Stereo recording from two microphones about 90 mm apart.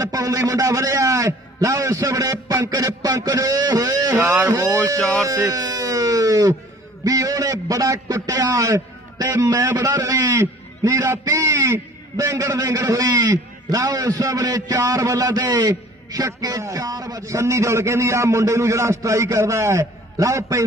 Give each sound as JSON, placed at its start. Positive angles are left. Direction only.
{"t": 0.0, "sound": "a man's voice", "side_deg": -40}
{"t": 5.5, "sound": "music", "side_deg": -40}
{"t": 7.1, "sound": "a man's voice", "side_deg": -40}